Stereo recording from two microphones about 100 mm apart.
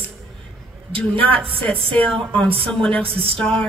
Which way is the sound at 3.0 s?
70° right (ahead or behind).